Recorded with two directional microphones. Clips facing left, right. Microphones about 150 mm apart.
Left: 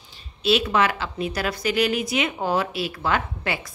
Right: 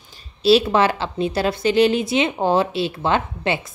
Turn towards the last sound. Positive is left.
turn(degrees=-25)  # may be behind; listen again after turning